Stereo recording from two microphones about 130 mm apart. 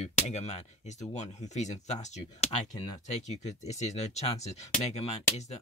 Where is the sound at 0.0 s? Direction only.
60° left (ahead or behind).